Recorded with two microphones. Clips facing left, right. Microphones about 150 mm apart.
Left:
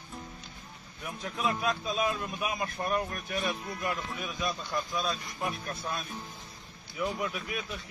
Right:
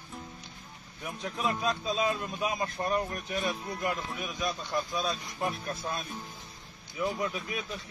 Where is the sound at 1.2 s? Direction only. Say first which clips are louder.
Even; centre (ahead or behind).